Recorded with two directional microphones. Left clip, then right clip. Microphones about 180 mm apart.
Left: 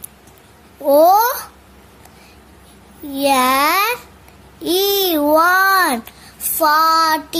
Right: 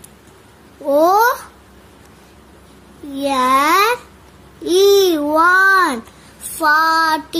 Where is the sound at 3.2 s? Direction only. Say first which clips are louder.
Even; 50° left (ahead or behind).